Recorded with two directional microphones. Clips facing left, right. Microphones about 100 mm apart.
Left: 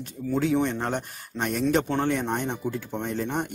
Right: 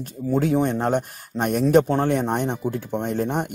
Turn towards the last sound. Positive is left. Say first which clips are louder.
# right 4 dB
turn(degrees=-55)  # may be behind; listen again after turning